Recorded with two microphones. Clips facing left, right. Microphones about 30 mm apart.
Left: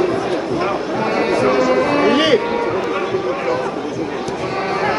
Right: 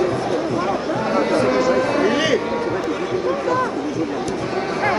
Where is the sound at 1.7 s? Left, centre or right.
Left.